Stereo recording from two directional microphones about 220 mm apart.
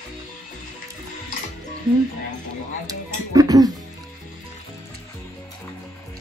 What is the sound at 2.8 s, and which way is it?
Music, 15° right (ahead or behind).